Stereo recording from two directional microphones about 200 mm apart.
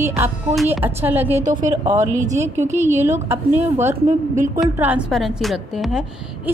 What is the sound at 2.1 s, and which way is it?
Speech, 40° right (ahead or behind).